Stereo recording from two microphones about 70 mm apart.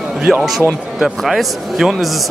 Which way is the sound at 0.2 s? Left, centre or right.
Centre.